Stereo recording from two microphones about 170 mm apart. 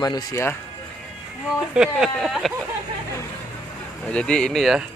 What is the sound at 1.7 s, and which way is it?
Speech, 5° right (ahead or behind).